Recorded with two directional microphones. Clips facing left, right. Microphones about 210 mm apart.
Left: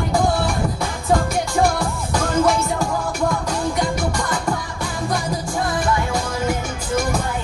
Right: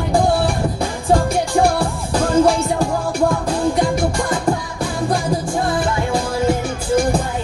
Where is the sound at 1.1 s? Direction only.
30° right (ahead or behind).